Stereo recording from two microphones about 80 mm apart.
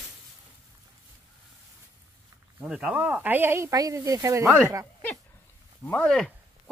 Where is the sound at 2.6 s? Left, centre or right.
Centre; by 3.7 s right.